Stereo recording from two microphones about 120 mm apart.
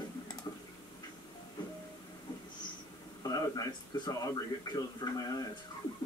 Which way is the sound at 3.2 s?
30° left (ahead or behind).